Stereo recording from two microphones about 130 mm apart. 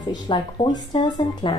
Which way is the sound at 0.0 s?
35° left (ahead or behind).